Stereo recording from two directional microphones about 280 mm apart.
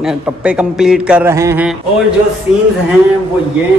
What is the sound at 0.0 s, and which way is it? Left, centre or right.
Speech, centre.